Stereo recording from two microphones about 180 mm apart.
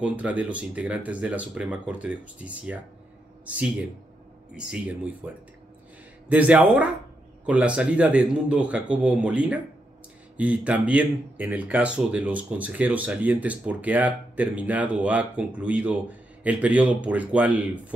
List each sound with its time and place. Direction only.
0.0 s speech: 5° right (ahead or behind)